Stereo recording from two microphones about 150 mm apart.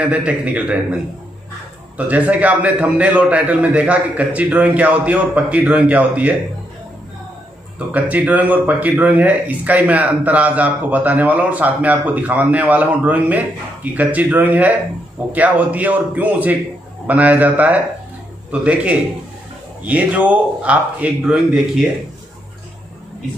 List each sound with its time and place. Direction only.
0.0 s speech: 10° right (ahead or behind)
2.0 s speech: 10° right (ahead or behind)
7.9 s speech: 10° right (ahead or behind)